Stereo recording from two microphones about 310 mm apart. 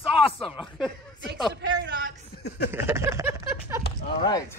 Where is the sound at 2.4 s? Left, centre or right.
Left.